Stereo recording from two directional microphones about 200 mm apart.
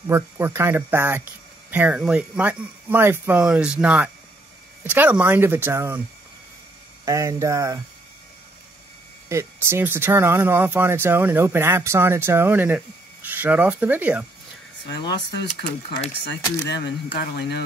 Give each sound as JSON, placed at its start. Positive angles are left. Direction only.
{"t": 0.0, "sound": "speech", "side_deg": -15}
{"t": 7.1, "sound": "speech", "side_deg": -15}
{"t": 9.3, "sound": "speech", "side_deg": -15}
{"t": 15.0, "sound": "speech", "side_deg": 20}
{"t": 16.6, "sound": "speech", "side_deg": 60}